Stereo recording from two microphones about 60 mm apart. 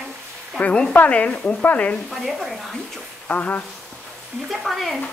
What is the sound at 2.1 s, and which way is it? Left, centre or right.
Speech, centre.